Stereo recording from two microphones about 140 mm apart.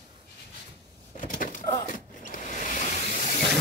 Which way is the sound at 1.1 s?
75° left (ahead or behind).